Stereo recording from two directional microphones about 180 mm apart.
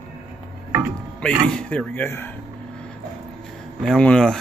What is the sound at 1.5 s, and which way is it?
Speech, 5° left (ahead or behind).